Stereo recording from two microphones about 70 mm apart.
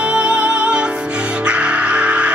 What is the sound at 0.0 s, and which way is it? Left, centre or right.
Music, centre.